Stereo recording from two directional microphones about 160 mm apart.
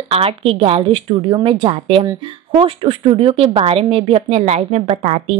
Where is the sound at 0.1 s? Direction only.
35° right (ahead or behind).